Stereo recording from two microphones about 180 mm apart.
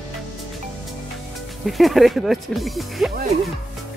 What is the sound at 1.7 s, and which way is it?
Speech, centre (ahead or behind).